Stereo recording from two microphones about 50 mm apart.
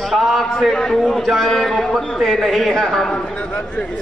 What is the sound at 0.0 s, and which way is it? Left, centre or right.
A man's voice, centre.